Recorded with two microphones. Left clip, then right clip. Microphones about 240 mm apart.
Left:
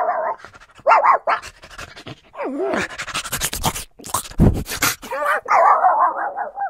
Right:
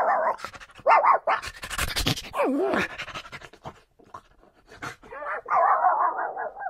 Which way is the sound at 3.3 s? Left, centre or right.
Left.